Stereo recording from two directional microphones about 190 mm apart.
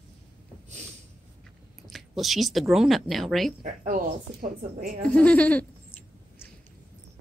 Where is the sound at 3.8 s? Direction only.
45° right (ahead or behind).